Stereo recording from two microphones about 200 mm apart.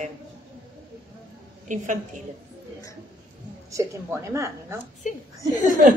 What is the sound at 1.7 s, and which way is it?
Speech, 40° right (ahead or behind).